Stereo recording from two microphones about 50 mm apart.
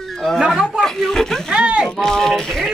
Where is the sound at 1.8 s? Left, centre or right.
Centre.